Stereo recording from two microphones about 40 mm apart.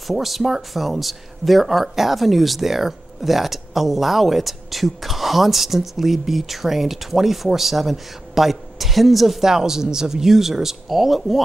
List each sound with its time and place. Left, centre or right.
0.0 s speech: centre